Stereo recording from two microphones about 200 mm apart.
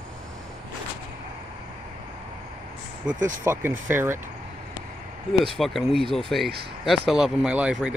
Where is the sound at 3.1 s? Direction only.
40° right (ahead or behind).